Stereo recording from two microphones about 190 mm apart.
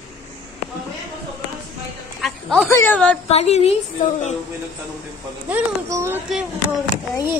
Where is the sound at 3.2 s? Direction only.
35° left (ahead or behind).